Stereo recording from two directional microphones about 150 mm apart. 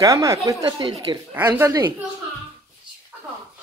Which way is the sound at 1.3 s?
15° right (ahead or behind).